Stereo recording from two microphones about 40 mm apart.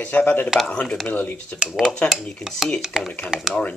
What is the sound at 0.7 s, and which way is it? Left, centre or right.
Speech, left.